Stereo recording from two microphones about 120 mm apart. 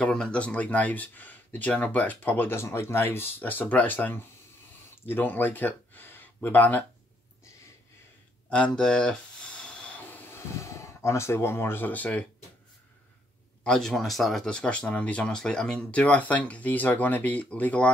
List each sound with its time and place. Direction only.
0.0 s speech: 10° left (ahead or behind)
8.5 s speech: 10° left (ahead or behind)
9.6 s train: 10° left (ahead or behind)
10.6 s speech: 25° left (ahead or behind)
13.7 s speech: 5° left (ahead or behind)